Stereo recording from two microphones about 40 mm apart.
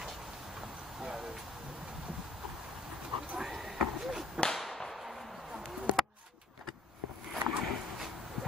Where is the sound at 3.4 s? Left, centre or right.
Centre.